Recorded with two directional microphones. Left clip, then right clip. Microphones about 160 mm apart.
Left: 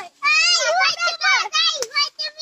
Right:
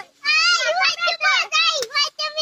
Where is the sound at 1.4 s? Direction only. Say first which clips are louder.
Right 1 dB; 15° right (ahead or behind).